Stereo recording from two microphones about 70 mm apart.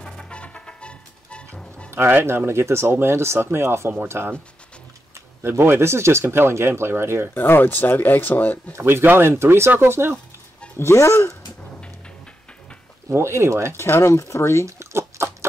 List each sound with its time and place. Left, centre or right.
0.0 s music: centre
1.9 s speech: right
7.3 s speech: left
8.7 s speech: right
10.8 s speech: left
13.1 s speech: right
13.7 s speech: left
14.7 s a sound: right